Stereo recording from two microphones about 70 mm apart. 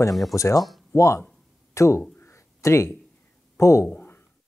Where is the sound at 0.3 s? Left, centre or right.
Left.